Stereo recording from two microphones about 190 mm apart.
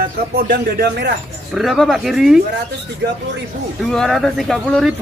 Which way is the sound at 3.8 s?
Centre (ahead or behind).